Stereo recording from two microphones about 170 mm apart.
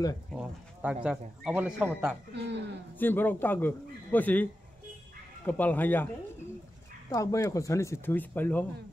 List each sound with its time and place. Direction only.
0.3 s bird: 5° right (ahead or behind)
1.0 s speech: 5° right (ahead or behind)
1.9 s speech: centre (ahead or behind)
2.3 s a man's voice: 90° right
3.0 s speech: 10° left (ahead or behind)
7.1 s speech: 20° left (ahead or behind)